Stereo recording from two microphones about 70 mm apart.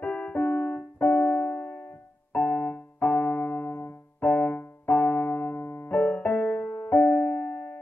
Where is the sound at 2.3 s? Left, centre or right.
Left.